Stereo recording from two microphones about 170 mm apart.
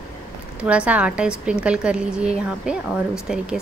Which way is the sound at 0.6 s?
10° right (ahead or behind).